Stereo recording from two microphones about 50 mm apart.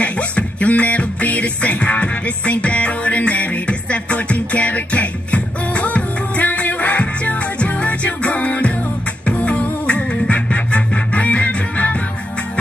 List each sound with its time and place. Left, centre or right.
0.0 s music: left